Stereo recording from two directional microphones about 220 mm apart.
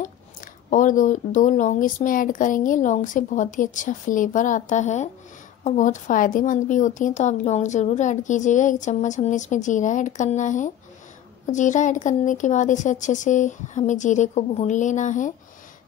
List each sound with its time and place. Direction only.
0.7 s a woman's voice: 35° left (ahead or behind)